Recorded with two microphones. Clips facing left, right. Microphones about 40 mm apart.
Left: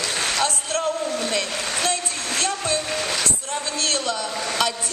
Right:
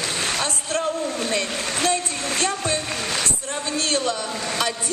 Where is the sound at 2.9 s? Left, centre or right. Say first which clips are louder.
Left 2 dB; centre.